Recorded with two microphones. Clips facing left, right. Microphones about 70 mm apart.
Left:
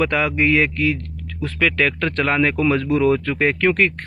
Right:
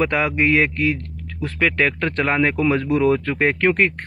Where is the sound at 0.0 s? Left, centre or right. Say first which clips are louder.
Even; right.